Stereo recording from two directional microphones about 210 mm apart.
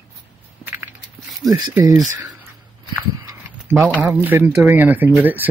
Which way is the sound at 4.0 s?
10° right (ahead or behind).